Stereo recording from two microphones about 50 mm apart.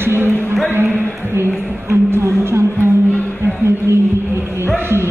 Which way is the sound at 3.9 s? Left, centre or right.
Right.